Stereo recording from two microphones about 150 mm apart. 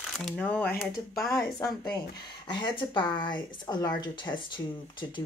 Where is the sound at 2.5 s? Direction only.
30° left (ahead or behind).